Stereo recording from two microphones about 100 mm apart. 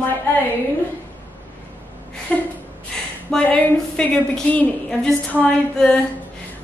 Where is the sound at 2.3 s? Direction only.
10° left (ahead or behind).